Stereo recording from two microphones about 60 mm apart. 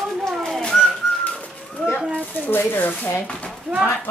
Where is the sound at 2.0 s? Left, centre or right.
Right.